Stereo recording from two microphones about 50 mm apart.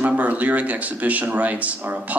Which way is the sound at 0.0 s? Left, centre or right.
Right.